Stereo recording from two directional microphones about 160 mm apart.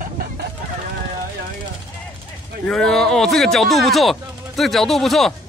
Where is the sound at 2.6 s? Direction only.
5° left (ahead or behind).